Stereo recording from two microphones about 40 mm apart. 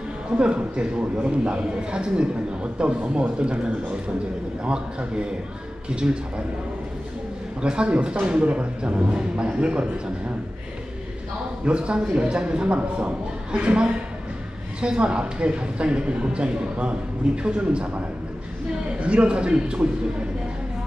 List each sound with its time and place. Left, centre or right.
0.4 s a man's voice: right
5.9 s a man's voice: right
7.6 s a man's voice: right
11.6 s a man's voice: right